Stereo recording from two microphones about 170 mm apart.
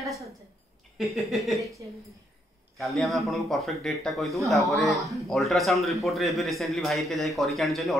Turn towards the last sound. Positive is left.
turn(degrees=0)  # may be behind; listen again after turning